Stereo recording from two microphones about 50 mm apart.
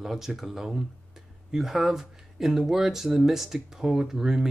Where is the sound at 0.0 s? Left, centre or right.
Centre.